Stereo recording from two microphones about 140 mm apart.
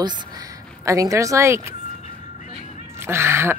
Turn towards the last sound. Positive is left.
turn(degrees=-15)  # may be behind; listen again after turning